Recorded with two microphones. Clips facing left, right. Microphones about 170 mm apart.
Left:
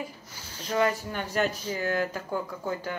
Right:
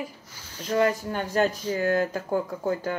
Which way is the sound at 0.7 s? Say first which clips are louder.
Right 3 dB; 40° right (ahead or behind).